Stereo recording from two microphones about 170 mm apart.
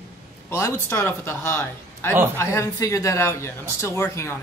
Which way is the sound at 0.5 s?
15° left (ahead or behind).